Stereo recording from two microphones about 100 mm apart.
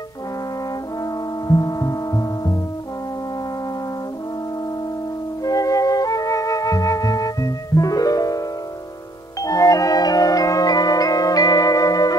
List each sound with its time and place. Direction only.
1.5 s gong: 35° left (ahead or behind)
5.4 s flute: 35° left (ahead or behind)
9.4 s marimba: 35° left (ahead or behind)